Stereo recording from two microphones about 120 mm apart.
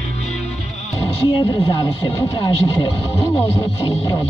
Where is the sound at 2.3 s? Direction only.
45° left (ahead or behind).